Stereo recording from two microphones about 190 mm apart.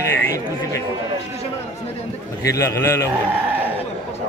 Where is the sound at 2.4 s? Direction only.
15° left (ahead or behind).